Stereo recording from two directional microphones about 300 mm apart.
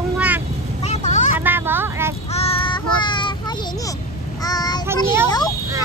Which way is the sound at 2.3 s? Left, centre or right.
Centre.